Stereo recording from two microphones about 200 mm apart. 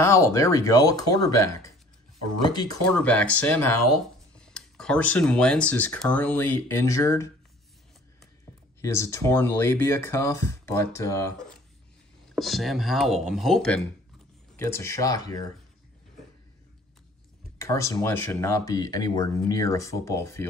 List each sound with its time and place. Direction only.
0.0 s speech: 15° left (ahead or behind)
2.9 s speech: 5° left (ahead or behind)
8.8 s speech: 15° left (ahead or behind)
12.4 s speech: centre (ahead or behind)
14.6 s speech: 15° left (ahead or behind)
17.6 s speech: 15° left (ahead or behind)